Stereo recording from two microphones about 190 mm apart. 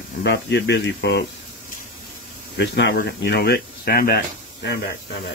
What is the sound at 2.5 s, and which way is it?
Speech, 65° left (ahead or behind).